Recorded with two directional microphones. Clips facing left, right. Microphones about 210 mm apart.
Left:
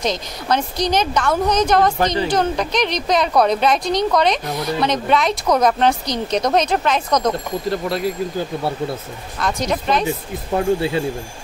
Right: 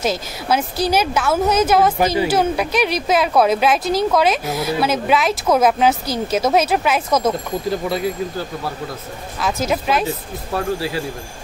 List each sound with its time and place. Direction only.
0.0 s a woman's voice: 5° right (ahead or behind)
9.4 s a woman's voice: 5° right (ahead or behind)
10.0 s speech: 20° left (ahead or behind)